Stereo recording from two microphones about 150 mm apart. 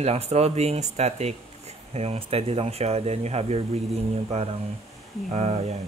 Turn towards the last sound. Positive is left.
turn(degrees=-45)  # may be behind; listen again after turning